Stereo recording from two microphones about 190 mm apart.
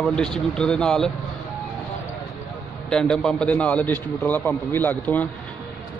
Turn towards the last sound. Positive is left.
turn(degrees=10)  # may be behind; listen again after turning